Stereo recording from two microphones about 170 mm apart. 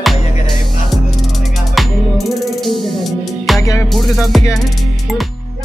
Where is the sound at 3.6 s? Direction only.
15° left (ahead or behind).